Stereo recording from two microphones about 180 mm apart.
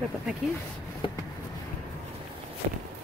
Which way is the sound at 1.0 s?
30° left (ahead or behind).